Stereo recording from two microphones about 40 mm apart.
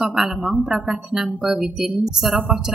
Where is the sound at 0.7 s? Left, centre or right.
Centre.